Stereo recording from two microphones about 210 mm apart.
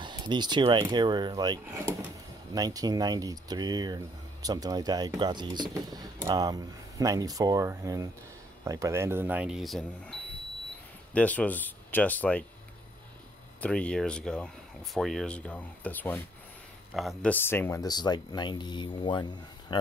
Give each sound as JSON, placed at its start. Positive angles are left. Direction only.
{"t": 0.0, "sound": "speech", "side_deg": -20}
{"t": 11.1, "sound": "speech", "side_deg": 5}
{"t": 13.6, "sound": "speech", "side_deg": 5}
{"t": 19.7, "sound": "a sound", "side_deg": 20}